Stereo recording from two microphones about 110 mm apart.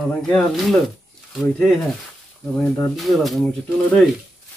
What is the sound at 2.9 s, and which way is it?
Speech, centre (ahead or behind).